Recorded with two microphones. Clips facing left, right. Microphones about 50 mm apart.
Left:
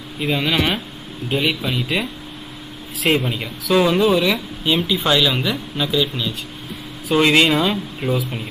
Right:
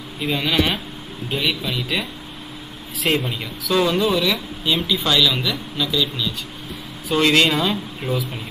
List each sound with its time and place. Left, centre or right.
0.2 s speech: centre
3.0 s speech: centre